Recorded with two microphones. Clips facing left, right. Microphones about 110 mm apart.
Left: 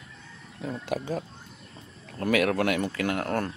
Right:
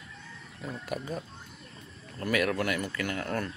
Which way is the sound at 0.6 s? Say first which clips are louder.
Left 5 dB; 90° left.